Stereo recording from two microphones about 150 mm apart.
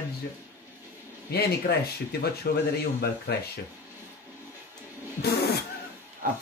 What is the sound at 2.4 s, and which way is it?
Speech, 90° left.